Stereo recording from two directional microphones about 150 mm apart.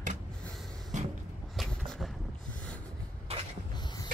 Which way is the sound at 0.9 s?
55° right (ahead or behind).